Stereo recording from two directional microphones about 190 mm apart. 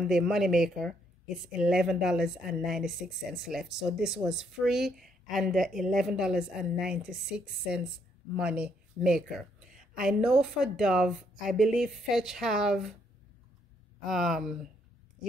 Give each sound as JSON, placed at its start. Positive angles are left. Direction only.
{"t": 0.0, "sound": "speech", "side_deg": 0}
{"t": 14.0, "sound": "speech", "side_deg": 0}